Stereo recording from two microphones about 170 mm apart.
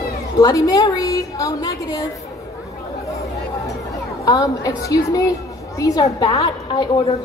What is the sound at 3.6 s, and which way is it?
A woman's voice, 20° left (ahead or behind).